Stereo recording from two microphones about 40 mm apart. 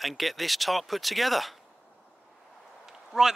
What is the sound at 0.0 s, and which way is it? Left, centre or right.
Speech, centre.